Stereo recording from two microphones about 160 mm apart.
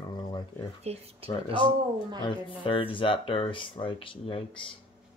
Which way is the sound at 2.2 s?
30° left (ahead or behind).